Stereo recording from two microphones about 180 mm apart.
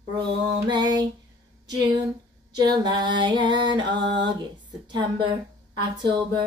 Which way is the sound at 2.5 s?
20° right (ahead or behind).